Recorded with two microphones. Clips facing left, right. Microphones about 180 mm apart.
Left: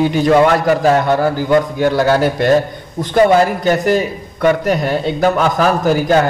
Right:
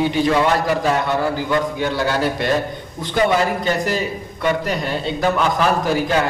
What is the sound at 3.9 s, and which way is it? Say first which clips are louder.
A man's voice: left 7 dB; 45° left (ahead or behind).